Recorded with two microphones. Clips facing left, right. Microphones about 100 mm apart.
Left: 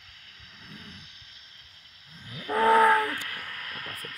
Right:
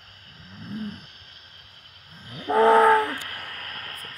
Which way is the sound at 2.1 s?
55° right (ahead or behind).